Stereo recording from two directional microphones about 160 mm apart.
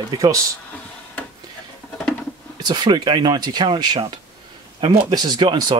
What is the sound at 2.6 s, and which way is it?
Speech, 25° right (ahead or behind).